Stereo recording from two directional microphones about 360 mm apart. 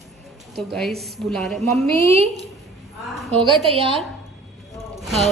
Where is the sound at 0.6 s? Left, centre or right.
Centre.